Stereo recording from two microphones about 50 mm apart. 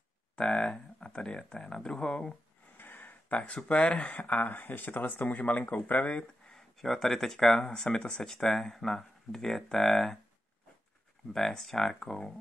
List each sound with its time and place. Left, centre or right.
0.4 s speech: centre
2.8 s a sound: left
3.4 s speech: left
6.4 s speech: centre
7.6 s speech: centre
11.3 s speech: centre